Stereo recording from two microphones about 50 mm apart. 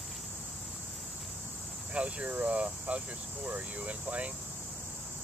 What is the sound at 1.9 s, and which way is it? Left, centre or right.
Speech, right.